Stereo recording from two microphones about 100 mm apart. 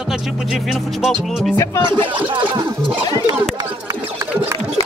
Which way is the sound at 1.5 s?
25° left (ahead or behind).